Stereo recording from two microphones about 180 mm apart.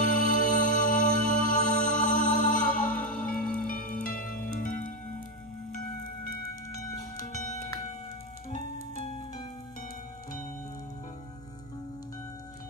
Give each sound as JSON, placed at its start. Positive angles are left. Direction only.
{"t": 0.0, "sound": "music", "side_deg": 45}
{"t": 9.0, "sound": "music", "side_deg": 30}